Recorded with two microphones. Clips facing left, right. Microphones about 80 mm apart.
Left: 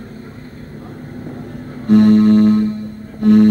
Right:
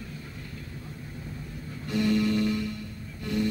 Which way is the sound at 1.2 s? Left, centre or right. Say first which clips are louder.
Left 11 dB; left.